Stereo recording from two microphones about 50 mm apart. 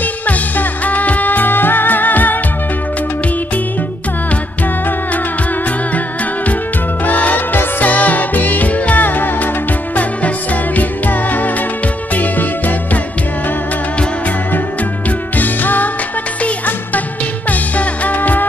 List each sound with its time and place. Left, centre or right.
0.0 s music: left
7.1 s music: left
15.0 s music: left